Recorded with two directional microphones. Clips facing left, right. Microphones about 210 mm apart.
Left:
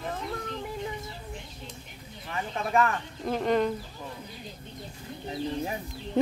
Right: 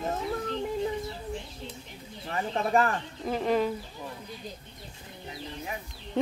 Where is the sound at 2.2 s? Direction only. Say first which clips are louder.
Right 3 dB; 35° right (ahead or behind).